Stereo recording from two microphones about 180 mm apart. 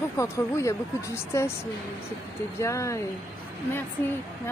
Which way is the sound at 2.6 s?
15° left (ahead or behind).